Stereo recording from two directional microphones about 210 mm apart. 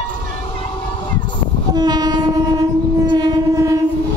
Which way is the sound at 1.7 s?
20° right (ahead or behind).